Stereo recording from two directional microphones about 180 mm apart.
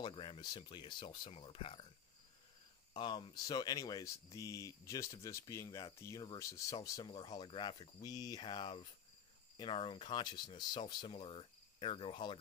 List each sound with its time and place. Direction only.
0.0 s speech: 30° left (ahead or behind)
2.9 s speech: 25° left (ahead or behind)